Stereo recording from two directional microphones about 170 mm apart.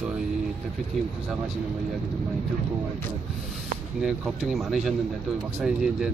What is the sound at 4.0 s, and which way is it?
Speech, centre (ahead or behind).